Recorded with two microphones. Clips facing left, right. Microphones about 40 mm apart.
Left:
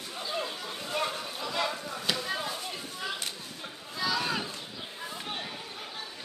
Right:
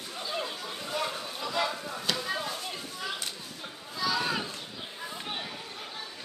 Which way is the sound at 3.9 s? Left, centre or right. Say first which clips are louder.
Right 1 dB; centre.